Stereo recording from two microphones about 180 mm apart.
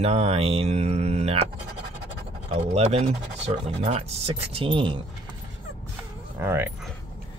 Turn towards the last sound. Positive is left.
turn(degrees=-15)  # may be behind; listen again after turning